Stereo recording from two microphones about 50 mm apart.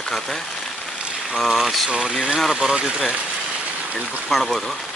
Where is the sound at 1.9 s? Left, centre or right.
Centre.